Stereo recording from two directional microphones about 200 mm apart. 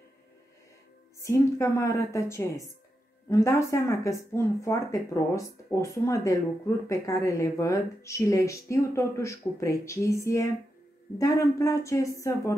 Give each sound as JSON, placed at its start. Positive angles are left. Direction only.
{"t": 1.2, "sound": "a woman's voice", "side_deg": 15}